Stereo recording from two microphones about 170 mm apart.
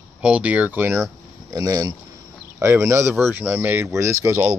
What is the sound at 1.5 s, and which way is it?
Speech, 20° right (ahead or behind).